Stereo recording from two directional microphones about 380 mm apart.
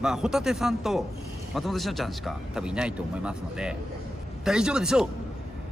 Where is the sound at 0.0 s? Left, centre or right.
Centre.